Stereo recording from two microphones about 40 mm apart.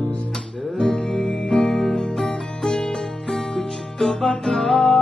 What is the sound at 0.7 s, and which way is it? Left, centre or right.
Music, centre.